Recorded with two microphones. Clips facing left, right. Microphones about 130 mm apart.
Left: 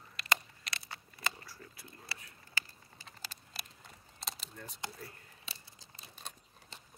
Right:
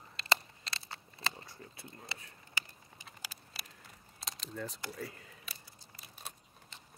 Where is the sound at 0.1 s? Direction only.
30° right (ahead or behind).